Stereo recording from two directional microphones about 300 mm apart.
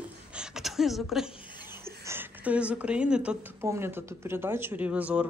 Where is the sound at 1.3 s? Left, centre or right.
Centre.